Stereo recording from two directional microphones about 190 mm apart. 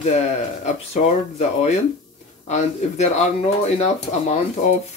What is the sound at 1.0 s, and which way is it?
Speech, 35° left (ahead or behind).